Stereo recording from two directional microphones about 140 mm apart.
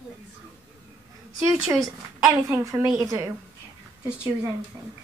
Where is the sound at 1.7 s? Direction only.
20° right (ahead or behind).